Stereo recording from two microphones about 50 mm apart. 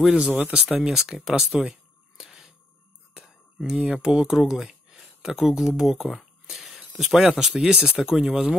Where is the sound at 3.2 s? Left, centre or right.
Centre.